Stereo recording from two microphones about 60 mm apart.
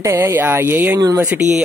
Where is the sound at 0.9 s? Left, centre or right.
Right.